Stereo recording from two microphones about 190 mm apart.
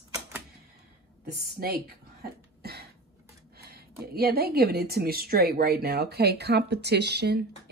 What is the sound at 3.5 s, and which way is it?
Speech, 55° right (ahead or behind).